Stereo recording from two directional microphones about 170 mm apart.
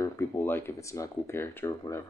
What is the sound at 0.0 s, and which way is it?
Speech, 20° left (ahead or behind).